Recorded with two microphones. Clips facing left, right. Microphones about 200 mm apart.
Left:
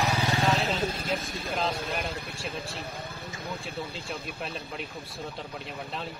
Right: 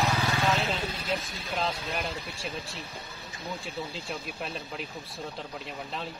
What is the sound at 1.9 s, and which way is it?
Speech, centre (ahead or behind).